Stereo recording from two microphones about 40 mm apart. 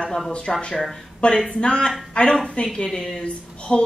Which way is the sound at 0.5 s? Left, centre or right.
Centre.